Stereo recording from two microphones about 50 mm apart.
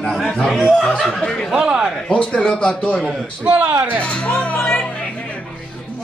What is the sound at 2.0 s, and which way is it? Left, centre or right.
Speech, centre.